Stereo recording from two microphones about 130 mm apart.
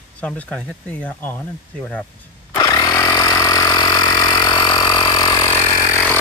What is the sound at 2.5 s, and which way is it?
Vehicle, 30° left (ahead or behind).